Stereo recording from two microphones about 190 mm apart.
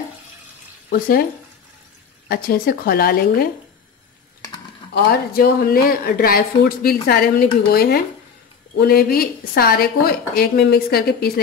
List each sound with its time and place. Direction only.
0.8 s speech: 50° left (ahead or behind)
2.2 s speech: 50° left (ahead or behind)
4.9 s speech: 55° left (ahead or behind)